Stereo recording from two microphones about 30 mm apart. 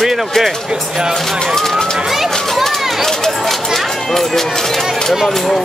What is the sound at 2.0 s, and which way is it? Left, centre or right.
Run, centre.